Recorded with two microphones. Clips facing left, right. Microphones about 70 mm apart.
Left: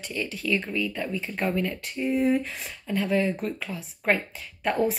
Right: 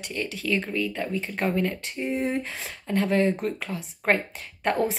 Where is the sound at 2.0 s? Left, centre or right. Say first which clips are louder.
Left 4 dB; right.